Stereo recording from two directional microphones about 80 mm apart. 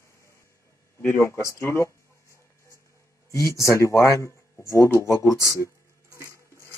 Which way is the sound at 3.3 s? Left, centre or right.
Left.